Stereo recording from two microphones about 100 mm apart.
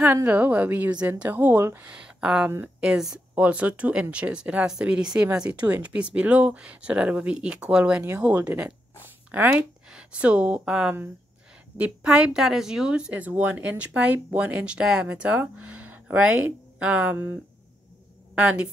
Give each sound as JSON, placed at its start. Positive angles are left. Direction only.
{"t": 0.0, "sound": "a woman's voice", "side_deg": -20}
{"t": 1.9, "sound": "a woman's voice", "side_deg": -10}